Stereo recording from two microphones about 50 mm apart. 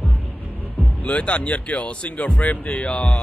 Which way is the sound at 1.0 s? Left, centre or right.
Left.